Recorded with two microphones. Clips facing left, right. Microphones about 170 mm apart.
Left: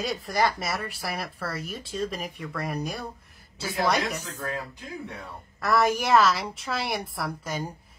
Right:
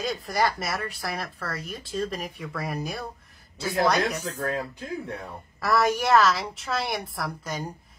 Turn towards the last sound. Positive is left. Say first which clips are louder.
# left 1 dB
turn(degrees=0)  # may be behind; listen again after turning